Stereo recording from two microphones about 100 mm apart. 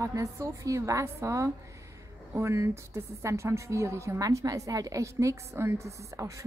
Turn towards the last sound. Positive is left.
turn(degrees=-30)  # may be behind; listen again after turning